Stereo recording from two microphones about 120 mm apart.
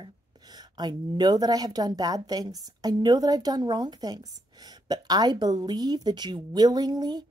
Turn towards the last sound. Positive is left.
turn(degrees=-35)  # may be behind; listen again after turning